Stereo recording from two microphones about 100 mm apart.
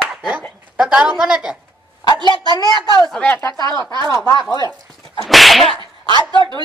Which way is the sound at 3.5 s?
35° left (ahead or behind).